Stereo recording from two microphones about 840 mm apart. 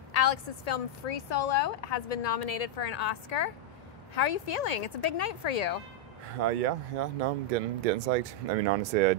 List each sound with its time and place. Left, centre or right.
0.1 s a woman's voice: left
6.4 s speech: right